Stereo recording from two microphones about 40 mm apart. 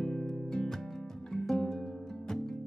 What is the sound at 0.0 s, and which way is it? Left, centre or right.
Music, centre.